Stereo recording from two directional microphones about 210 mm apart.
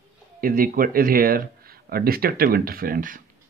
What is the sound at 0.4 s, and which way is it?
Speech, 45° right (ahead or behind).